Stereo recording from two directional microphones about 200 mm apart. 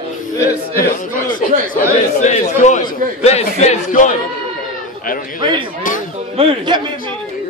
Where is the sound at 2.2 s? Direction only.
35° left (ahead or behind).